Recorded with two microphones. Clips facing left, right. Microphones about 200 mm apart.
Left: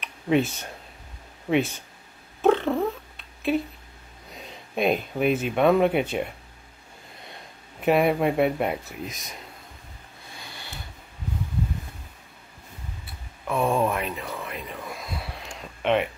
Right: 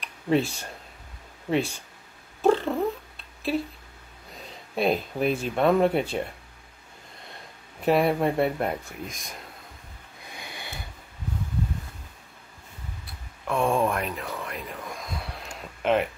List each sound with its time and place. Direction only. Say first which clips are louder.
0.3 s speech: left 1 dB; centre (ahead or behind)
2.4 s cat: left 1 dB; centre (ahead or behind)
4.8 s speech: left 2 dB; 5° left (ahead or behind)
7.8 s speech: left 1 dB; 5° left (ahead or behind)
10.3 s a sound: right 2 dB; 15° right (ahead or behind)
13.5 s a sound: even; 5° left (ahead or behind)